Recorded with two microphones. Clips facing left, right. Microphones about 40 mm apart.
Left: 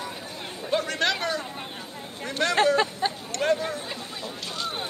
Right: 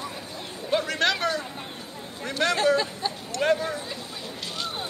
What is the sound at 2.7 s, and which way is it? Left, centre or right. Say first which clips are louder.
Speech: left 2 dB; left.